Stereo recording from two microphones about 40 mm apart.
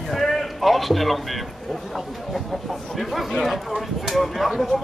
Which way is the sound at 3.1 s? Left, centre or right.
Centre.